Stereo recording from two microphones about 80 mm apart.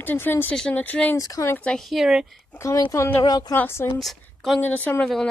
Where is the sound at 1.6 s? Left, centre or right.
Centre.